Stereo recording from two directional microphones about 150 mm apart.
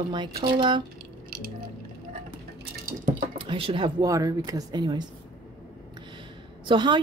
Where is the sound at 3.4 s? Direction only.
35° right (ahead or behind).